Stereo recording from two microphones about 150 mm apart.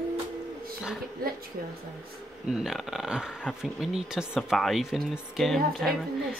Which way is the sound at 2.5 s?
Centre (ahead or behind).